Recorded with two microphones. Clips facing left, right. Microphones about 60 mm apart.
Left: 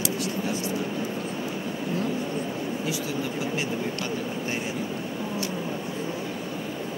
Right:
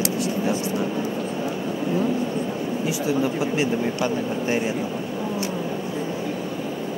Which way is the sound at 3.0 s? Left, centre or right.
Right.